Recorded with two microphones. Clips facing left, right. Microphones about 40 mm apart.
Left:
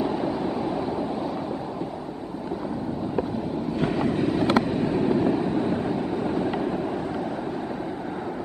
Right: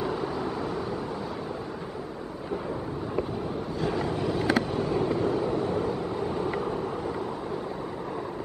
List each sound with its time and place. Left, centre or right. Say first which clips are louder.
3.8 s train: left 4 dB; left
4.6 s vehicle: left 4 dB; left